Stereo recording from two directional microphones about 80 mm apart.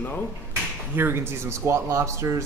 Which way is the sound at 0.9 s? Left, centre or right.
Right.